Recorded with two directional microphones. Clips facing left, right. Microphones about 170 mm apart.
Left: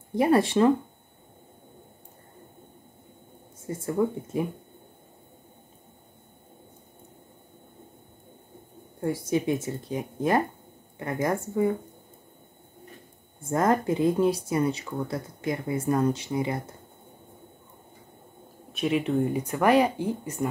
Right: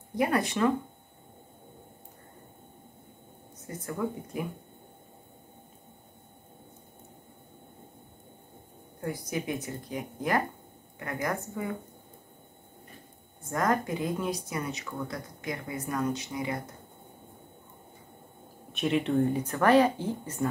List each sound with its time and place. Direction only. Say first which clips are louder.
0.1 s speech: left 6 dB; 30° left (ahead or behind)
3.6 s speech: left 7 dB; 25° left (ahead or behind)
9.0 s speech: left 7 dB; 25° left (ahead or behind)
13.4 s speech: left 4 dB; 25° left (ahead or behind)
18.7 s speech: left 2 dB; centre (ahead or behind)